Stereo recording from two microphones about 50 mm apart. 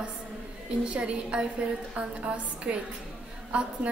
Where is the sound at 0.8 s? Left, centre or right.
Right.